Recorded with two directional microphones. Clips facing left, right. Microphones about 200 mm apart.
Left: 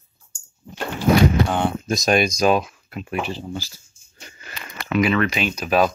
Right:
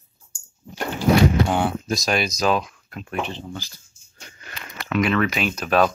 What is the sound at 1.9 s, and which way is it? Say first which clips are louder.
Speech: left 4 dB; 20° left (ahead or behind).